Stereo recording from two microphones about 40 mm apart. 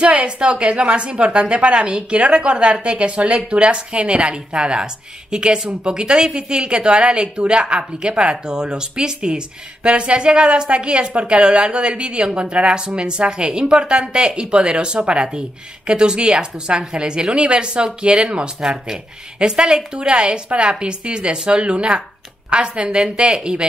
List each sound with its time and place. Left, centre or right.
0.0 s a woman's voice: right